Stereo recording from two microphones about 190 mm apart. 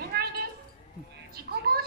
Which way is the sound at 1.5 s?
55° right (ahead or behind).